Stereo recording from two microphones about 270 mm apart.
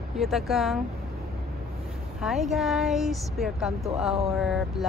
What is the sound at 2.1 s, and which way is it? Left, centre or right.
Speech, centre.